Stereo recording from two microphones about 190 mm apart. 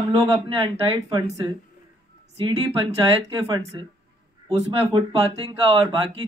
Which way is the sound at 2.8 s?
30° right (ahead or behind).